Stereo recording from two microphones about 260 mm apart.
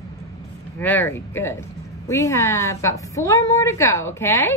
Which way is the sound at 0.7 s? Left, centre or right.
Centre.